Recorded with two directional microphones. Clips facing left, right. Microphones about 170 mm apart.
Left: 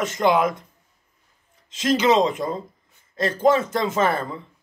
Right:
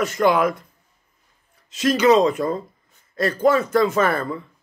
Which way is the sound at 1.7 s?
25° left (ahead or behind).